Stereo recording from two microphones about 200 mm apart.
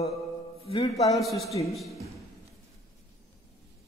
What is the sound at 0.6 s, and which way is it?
Speech, 30° left (ahead or behind).